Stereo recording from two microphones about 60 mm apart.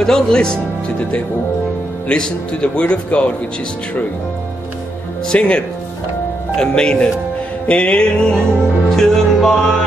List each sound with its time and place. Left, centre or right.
0.0 s speech: centre
5.3 s music: centre